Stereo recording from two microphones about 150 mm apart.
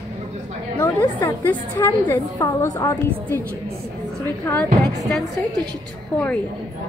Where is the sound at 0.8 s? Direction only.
20° left (ahead or behind).